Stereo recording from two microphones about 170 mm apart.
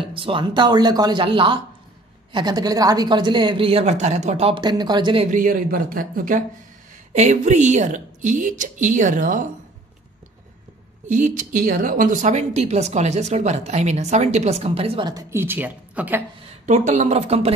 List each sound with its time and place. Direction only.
0.0 s a woman's voice: 30° right (ahead or behind)
4.6 s a woman's voice: 25° right (ahead or behind)
5.3 s a woman's voice: 55° right (ahead or behind)
11.1 s speech: 50° right (ahead or behind); by 16.3 s 10° right (ahead or behind)
16.4 s speech: 45° right (ahead or behind)